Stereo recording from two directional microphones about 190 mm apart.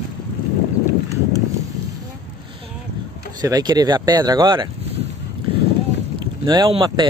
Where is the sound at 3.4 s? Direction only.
20° right (ahead or behind).